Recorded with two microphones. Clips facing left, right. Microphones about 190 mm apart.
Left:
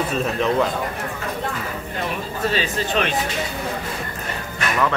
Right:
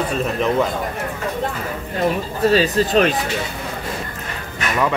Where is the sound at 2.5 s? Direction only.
40° right (ahead or behind).